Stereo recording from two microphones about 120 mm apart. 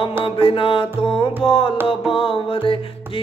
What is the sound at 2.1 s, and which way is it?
Mantra, 45° left (ahead or behind).